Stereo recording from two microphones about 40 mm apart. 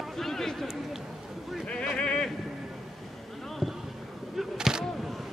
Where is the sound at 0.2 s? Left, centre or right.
Centre.